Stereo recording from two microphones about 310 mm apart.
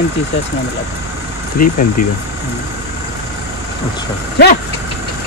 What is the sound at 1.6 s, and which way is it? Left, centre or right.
Speech, left.